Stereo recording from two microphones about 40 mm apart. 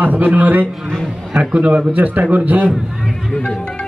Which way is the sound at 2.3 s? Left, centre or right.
Right.